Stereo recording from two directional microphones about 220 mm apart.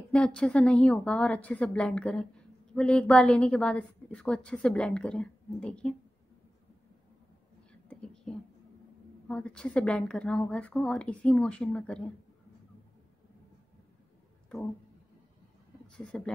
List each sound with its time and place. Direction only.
0.1 s a woman's voice: 5° left (ahead or behind)
8.0 s whispering: 5° left (ahead or behind)
9.3 s a woman's voice: 5° left (ahead or behind)
15.9 s speech: 5° left (ahead or behind)